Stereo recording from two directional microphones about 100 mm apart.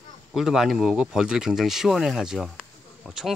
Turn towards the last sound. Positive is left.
turn(degrees=-5)  # may be behind; listen again after turning